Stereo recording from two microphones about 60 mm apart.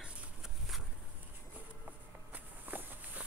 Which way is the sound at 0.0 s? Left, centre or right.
Centre.